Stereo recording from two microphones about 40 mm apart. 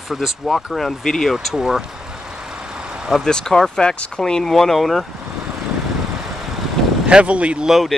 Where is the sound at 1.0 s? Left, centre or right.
Centre.